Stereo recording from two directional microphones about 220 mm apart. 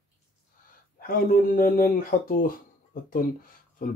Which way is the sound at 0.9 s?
40° left (ahead or behind).